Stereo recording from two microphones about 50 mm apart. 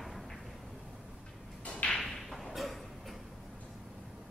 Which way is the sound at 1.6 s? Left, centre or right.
Left.